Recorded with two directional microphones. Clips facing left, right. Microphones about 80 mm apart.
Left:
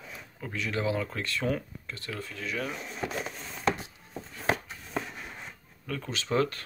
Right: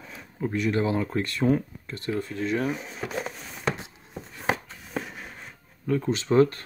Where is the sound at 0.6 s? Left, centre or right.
Right.